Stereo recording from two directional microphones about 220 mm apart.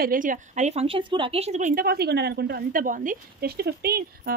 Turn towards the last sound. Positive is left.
turn(degrees=-45)  # may be behind; listen again after turning